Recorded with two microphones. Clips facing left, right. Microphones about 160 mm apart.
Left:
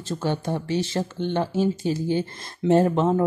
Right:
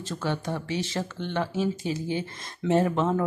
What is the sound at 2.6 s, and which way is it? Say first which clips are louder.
Speech: left 4 dB; 35° left (ahead or behind).